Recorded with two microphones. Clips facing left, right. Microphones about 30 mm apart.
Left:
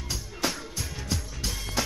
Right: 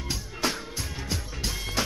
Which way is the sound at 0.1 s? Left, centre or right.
Right.